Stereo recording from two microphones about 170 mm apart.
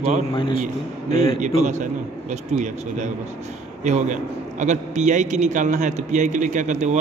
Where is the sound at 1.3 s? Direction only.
45° right (ahead or behind).